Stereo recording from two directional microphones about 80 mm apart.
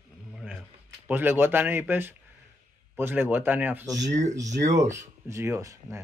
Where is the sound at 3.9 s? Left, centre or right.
Right.